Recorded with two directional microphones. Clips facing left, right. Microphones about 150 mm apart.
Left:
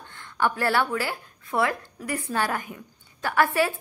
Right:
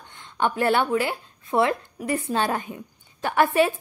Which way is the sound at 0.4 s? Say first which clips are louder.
Right 2 dB; 20° right (ahead or behind).